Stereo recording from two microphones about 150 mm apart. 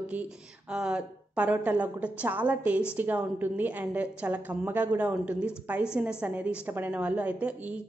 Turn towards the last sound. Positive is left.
turn(degrees=-10)  # may be behind; listen again after turning